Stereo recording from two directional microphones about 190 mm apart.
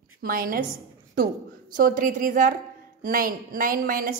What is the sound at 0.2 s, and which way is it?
A woman's voice, 50° right (ahead or behind).